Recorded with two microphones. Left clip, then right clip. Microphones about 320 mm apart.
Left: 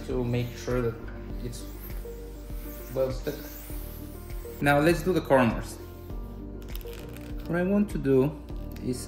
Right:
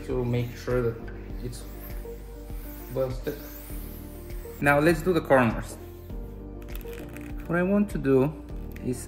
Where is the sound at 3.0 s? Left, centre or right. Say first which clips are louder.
Left 1 dB; centre.